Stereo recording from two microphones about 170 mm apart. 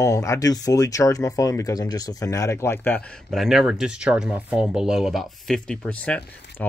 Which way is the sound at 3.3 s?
Centre (ahead or behind).